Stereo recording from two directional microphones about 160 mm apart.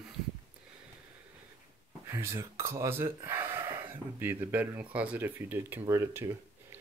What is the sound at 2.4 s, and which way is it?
Speech, 15° right (ahead or behind).